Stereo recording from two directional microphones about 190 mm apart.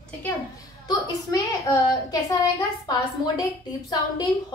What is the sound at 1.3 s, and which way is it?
A child's voice, 15° left (ahead or behind).